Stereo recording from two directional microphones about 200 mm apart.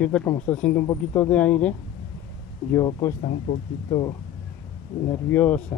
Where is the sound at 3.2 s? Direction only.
40° left (ahead or behind).